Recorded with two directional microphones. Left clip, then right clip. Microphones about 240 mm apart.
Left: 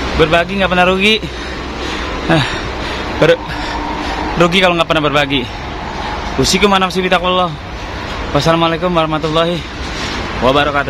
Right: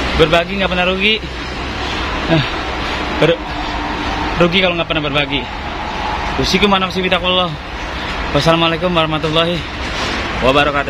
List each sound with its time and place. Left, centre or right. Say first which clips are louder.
0.2 s a man's voice: left 2 dB; centre
2.3 s a man's voice: left 4 dB; centre
4.5 s a man's voice: left 3 dB; centre
6.4 s a man's voice: left 3 dB; centre